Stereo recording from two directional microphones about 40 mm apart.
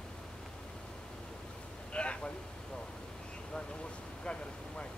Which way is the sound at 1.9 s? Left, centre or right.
Left.